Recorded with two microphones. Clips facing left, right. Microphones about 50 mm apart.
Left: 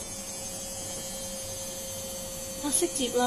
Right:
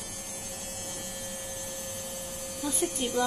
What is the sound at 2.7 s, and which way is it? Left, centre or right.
Speech, centre.